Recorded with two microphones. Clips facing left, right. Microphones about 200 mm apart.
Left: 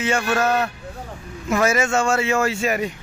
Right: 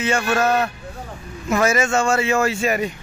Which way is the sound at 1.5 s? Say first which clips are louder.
Right 1 dB; 5° left (ahead or behind).